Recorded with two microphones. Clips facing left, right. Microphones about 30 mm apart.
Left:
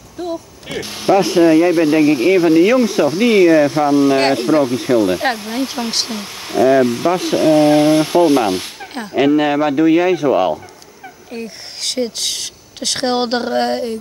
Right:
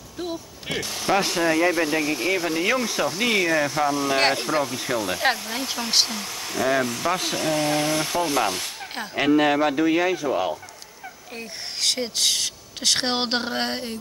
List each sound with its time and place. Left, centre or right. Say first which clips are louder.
0.8 s speech: left 9 dB; left
6.6 s speech: left 10 dB; centre
8.9 s speech: left 6 dB; centre
10.1 s speech: left 10 dB; left
11.3 s speech: left 5 dB; centre